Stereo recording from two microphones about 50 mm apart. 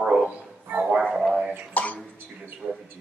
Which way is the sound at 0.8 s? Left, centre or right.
Right.